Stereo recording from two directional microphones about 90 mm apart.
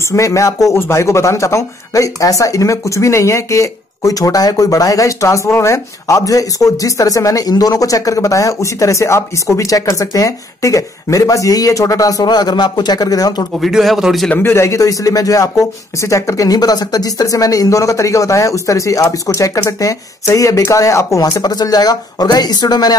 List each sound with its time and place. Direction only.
0.1 s speech: 35° left (ahead or behind)
13.6 s speech: centre (ahead or behind)
14.3 s speech: 30° left (ahead or behind); by 22.9 s 50° left (ahead or behind)